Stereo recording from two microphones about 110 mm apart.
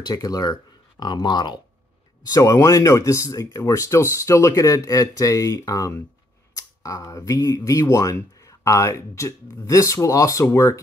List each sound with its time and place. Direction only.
0.0 s speech: 35° left (ahead or behind)
2.2 s speech: 30° left (ahead or behind)